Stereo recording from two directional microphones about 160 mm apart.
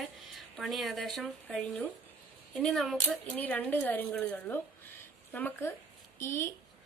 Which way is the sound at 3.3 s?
10° left (ahead or behind).